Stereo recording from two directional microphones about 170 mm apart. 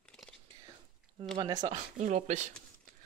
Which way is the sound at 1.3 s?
25° right (ahead or behind).